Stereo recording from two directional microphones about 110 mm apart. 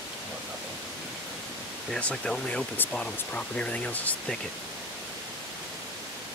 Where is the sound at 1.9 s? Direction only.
10° left (ahead or behind).